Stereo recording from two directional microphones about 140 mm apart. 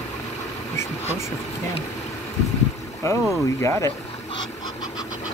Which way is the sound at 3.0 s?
20° left (ahead or behind).